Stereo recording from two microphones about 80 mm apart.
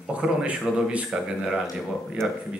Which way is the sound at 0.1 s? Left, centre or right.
Centre.